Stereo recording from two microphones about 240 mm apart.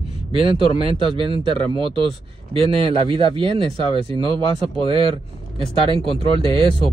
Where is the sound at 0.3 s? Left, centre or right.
Right.